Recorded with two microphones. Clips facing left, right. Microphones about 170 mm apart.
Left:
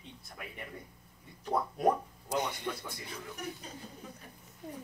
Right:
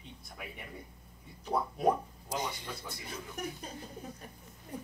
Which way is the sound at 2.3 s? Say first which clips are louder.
Left 4 dB; 60° left (ahead or behind).